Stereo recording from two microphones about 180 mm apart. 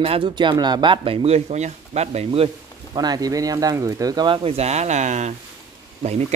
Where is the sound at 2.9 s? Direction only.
20° right (ahead or behind); by 6.4 s 40° right (ahead or behind).